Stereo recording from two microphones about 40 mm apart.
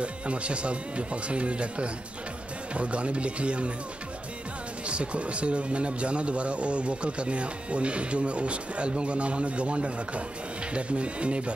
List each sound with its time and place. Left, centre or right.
0.0 s speech: right
4.8 s speech: right